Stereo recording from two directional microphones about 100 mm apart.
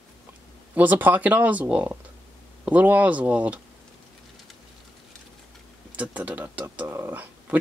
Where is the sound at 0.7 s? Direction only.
20° right (ahead or behind).